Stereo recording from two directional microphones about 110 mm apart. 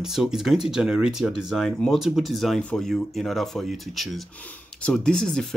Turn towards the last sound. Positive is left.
turn(degrees=5)  # may be behind; listen again after turning